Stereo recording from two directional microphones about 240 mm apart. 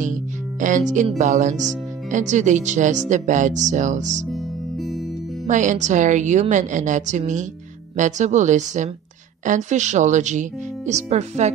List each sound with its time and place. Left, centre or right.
0.6 s speech: right
5.5 s a woman's voice: right